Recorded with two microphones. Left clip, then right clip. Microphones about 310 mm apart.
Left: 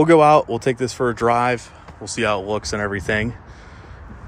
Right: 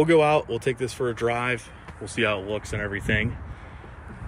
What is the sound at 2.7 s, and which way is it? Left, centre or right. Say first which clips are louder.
Speech: left 3 dB; left.